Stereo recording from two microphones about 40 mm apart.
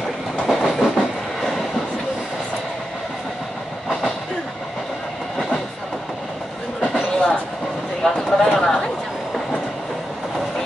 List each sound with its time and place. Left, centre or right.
0.4 s train: centre
6.8 s a sound: left
8.0 s clip-clop: centre